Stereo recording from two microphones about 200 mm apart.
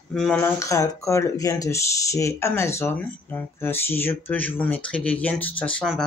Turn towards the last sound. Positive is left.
turn(degrees=5)  # may be behind; listen again after turning